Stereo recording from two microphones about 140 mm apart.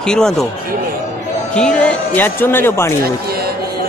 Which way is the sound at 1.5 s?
5° left (ahead or behind).